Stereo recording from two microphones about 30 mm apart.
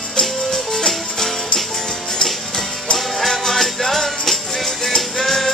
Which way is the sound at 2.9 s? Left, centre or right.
Centre.